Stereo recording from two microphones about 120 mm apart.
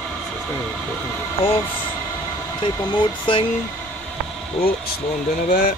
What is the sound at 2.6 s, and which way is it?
Speech, 40° left (ahead or behind).